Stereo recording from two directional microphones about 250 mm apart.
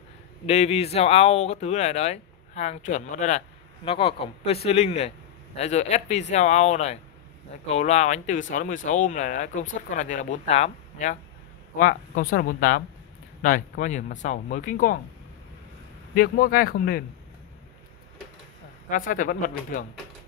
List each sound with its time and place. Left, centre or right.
0.5 s speech: left
16.2 s speech: left
18.9 s speech: left